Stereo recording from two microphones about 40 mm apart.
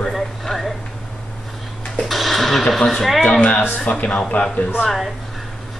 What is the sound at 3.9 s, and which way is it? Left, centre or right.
Speech, left.